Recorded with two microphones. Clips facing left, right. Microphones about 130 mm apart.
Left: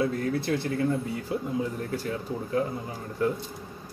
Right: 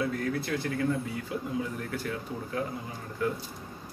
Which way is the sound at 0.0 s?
30° left (ahead or behind).